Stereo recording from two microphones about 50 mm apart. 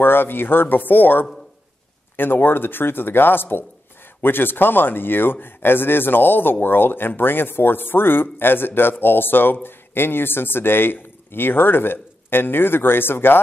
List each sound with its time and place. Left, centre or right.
0.0 s speech: left